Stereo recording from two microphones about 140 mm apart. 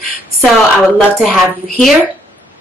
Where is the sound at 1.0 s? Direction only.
Centre (ahead or behind).